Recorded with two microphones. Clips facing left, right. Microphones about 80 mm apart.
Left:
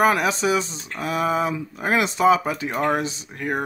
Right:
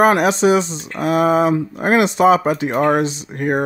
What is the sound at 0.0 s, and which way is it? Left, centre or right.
Speech, right.